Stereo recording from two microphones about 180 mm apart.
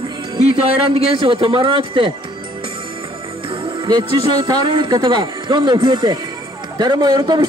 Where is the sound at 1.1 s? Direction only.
30° right (ahead or behind).